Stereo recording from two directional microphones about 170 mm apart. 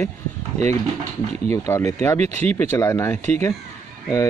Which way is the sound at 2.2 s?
40° right (ahead or behind).